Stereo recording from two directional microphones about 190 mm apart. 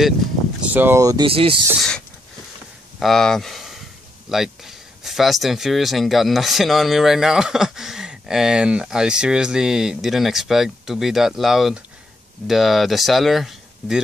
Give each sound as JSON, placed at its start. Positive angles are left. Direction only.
{"t": 0.6, "sound": "speech", "side_deg": -10}
{"t": 3.0, "sound": "speech", "side_deg": 0}